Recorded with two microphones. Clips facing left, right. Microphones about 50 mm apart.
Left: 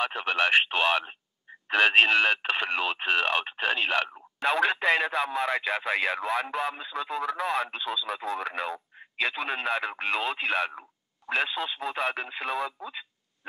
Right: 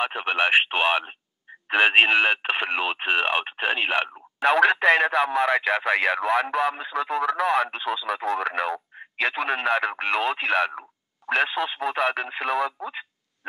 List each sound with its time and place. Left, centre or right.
0.0 s speech: centre
4.4 s speech: right